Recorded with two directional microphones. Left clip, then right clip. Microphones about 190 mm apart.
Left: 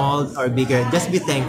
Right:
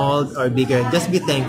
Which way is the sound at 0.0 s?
5° right (ahead or behind).